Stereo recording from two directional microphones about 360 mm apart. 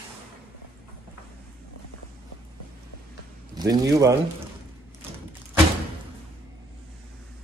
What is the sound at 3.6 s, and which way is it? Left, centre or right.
Speech, centre.